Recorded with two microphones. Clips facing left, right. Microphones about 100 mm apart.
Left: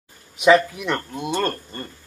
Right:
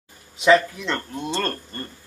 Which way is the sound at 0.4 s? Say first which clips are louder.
Left 1 dB; 15° left (ahead or behind).